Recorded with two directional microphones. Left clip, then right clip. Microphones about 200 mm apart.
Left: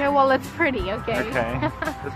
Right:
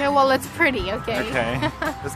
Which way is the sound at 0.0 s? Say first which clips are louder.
Right 1 dB; 5° left (ahead or behind).